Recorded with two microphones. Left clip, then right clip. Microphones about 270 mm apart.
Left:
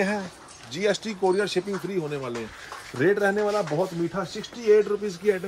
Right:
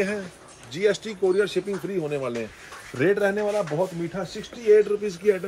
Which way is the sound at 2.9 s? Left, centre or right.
Centre.